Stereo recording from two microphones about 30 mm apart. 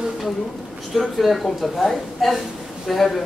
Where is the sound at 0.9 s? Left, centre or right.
Centre.